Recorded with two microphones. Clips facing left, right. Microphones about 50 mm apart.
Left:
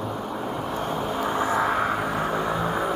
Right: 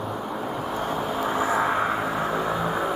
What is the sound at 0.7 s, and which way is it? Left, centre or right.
Vehicle, centre.